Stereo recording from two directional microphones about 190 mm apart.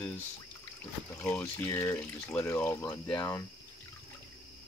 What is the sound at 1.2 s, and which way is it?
Speech, 10° left (ahead or behind).